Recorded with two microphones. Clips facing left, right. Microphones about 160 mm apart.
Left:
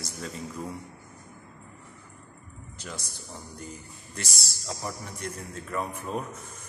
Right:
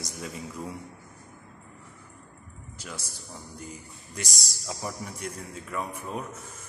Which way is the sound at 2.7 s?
5° right (ahead or behind).